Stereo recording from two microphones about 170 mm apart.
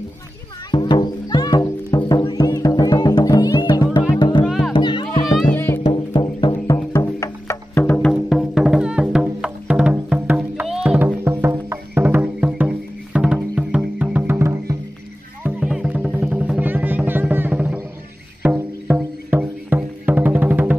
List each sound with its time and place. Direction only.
0.7 s music: 25° left (ahead or behind)
4.5 s music: centre (ahead or behind)
4.7 s music: 30° left (ahead or behind)
5.5 s music: 10° left (ahead or behind)
6.1 s music: 30° left (ahead or behind); by 8.1 s 10° left (ahead or behind)
8.1 s music: centre (ahead or behind)